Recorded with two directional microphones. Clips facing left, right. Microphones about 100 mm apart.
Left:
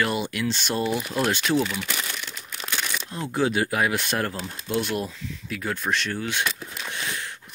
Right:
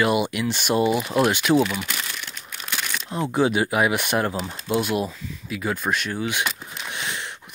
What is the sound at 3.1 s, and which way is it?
Speech, 20° right (ahead or behind).